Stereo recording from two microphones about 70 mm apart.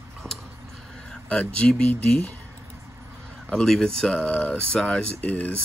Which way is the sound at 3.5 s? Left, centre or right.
Centre.